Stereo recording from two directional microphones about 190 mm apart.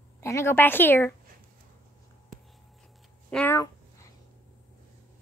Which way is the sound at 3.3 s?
10° left (ahead or behind).